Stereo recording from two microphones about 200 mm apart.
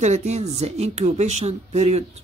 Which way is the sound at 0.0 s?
35° right (ahead or behind).